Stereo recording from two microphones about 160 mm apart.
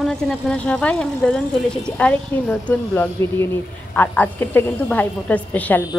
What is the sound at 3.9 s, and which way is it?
Speech, 10° left (ahead or behind).